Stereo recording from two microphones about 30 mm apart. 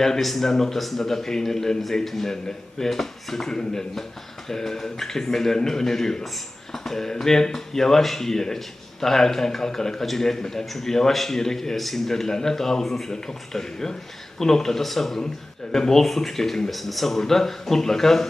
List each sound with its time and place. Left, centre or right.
0.2 s a man's voice: centre
10.9 s speech: centre